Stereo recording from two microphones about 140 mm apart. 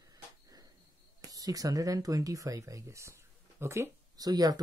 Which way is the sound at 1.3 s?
25° right (ahead or behind).